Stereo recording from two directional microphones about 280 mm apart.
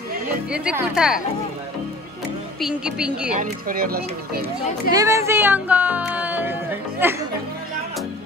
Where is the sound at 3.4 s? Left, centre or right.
Right.